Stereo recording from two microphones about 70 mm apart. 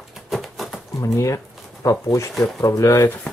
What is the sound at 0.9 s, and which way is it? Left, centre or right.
Speech, left.